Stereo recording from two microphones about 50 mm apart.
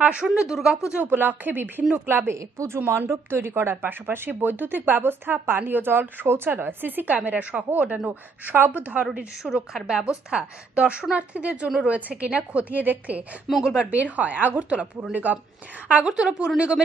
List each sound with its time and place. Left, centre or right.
0.0 s speech: right
0.5 s a woman's voice: centre
1.1 s a woman's voice: right
2.3 s a woman's voice: right
8.5 s speech: right
9.0 s a woman's voice: centre; by 13.2 s right
13.5 s a woman's voice: centre
14.1 s speech: right
16.2 s a woman's voice: right